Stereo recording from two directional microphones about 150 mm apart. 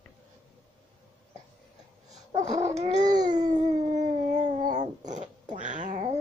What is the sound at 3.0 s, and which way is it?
Babbling, 25° right (ahead or behind).